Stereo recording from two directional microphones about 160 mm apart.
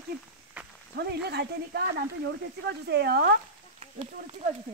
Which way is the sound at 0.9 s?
85° right.